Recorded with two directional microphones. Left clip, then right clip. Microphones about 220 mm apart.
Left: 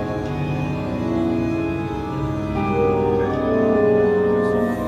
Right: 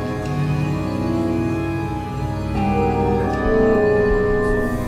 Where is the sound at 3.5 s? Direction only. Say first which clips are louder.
Right 3 dB; 25° right (ahead or behind).